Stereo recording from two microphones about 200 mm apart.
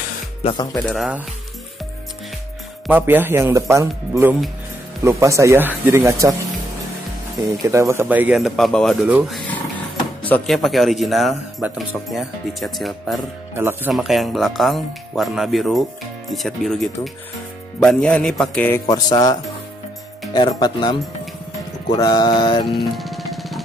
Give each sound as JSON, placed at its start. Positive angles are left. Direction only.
{"t": 0.8, "sound": "speech", "side_deg": 0}
{"t": 2.9, "sound": "speech", "side_deg": -10}
{"t": 7.6, "sound": "speech", "side_deg": -15}
{"t": 13.6, "sound": "speech", "side_deg": -10}
{"t": 13.9, "sound": "speech", "side_deg": 0}
{"t": 18.9, "sound": "speech", "side_deg": 20}
{"t": 20.3, "sound": "speech", "side_deg": 20}
{"t": 22.7, "sound": "drum", "side_deg": 0}